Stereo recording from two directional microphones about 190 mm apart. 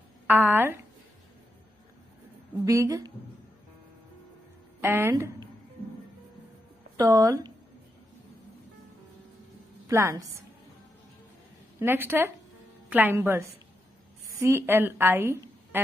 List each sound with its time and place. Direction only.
0.3 s a woman's voice: 10° right (ahead or behind)
2.6 s a woman's voice: 15° right (ahead or behind)
4.8 s speech: 15° right (ahead or behind)
7.0 s speech: 20° right (ahead or behind)
9.8 s a woman's voice: 15° right (ahead or behind)
11.8 s a woman's voice: 10° right (ahead or behind)